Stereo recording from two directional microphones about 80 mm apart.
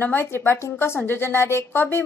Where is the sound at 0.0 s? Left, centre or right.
Left.